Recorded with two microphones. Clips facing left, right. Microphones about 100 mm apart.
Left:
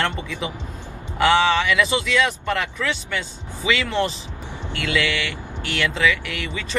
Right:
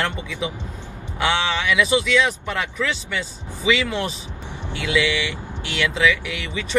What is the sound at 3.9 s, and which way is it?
Speech, 10° right (ahead or behind).